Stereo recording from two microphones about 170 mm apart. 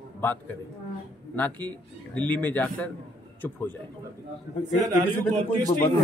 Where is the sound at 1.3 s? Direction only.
10° left (ahead or behind).